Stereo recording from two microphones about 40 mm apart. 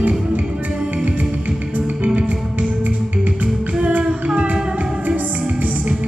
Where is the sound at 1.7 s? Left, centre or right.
Right.